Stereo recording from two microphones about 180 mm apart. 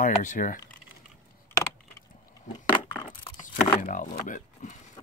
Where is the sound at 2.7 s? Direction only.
25° left (ahead or behind).